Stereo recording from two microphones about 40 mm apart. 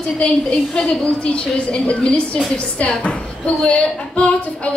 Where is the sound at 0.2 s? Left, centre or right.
Left.